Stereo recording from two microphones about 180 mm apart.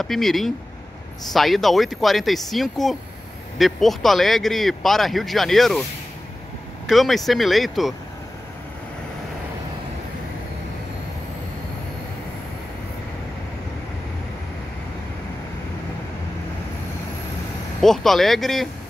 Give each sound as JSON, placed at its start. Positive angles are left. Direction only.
{"t": 0.0, "sound": "speech", "side_deg": 0}
{"t": 6.9, "sound": "speech", "side_deg": 0}
{"t": 17.8, "sound": "speech", "side_deg": 0}